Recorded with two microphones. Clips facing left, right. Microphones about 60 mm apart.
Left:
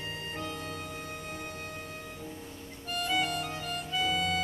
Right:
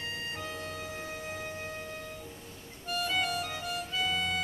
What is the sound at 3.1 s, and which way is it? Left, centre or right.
Music, centre.